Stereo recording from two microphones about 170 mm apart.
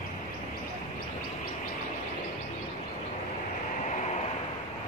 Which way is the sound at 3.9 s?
40° left (ahead or behind).